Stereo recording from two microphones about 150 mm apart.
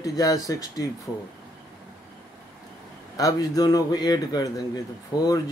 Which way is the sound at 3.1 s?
25° left (ahead or behind).